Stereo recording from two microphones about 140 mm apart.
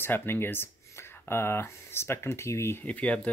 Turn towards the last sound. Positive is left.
turn(degrees=10)  # may be behind; listen again after turning